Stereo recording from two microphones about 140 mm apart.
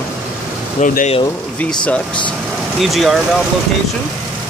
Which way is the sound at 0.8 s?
70° left (ahead or behind).